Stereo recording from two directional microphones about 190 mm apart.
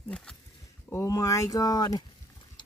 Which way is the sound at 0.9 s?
15° left (ahead or behind).